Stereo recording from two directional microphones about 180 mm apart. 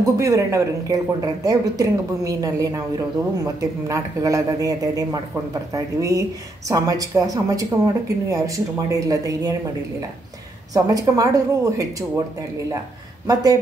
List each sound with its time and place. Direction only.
0.0 s speech: 15° right (ahead or behind)
10.7 s speech: 20° right (ahead or behind)
13.3 s speech: 20° right (ahead or behind)